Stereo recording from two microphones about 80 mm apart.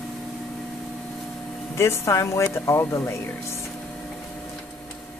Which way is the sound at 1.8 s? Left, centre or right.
Left.